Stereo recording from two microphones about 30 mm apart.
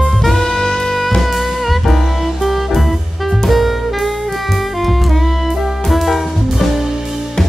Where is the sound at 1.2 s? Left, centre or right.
Centre.